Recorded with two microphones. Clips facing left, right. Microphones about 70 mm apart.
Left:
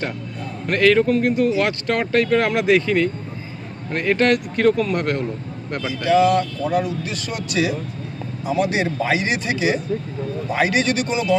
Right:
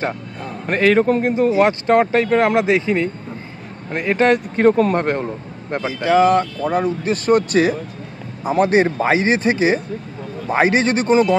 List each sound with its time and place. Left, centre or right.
0.7 s a man's voice: right